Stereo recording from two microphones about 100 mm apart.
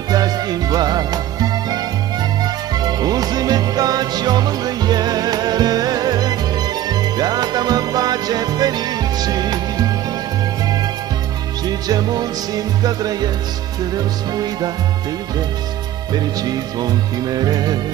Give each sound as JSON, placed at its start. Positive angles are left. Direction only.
{"t": 0.1, "sound": "music", "side_deg": -40}
{"t": 11.9, "sound": "music", "side_deg": -40}
{"t": 16.1, "sound": "music", "side_deg": -40}